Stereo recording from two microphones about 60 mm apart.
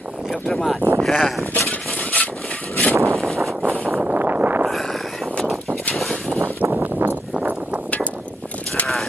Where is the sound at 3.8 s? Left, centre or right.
Right.